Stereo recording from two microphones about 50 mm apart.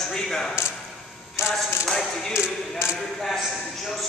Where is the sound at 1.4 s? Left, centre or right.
Left.